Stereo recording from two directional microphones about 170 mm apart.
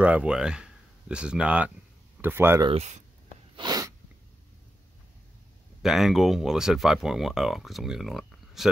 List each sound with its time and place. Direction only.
0.0 s speech: 5° right (ahead or behind)
2.6 s speech: 40° right (ahead or behind)
3.5 s sneeze: 25° right (ahead or behind)
5.8 s speech: centre (ahead or behind)